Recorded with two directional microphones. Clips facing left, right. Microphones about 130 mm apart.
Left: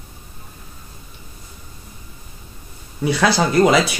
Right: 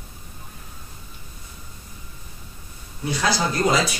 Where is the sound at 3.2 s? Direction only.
70° left (ahead or behind).